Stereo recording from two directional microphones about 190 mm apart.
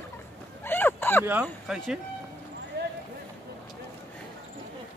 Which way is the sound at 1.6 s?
5° right (ahead or behind).